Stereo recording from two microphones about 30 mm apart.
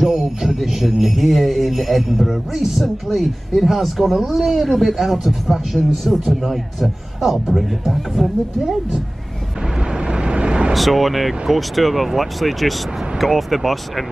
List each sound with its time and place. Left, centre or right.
0.1 s a man's voice: centre
9.6 s vehicle: right
10.7 s speech: centre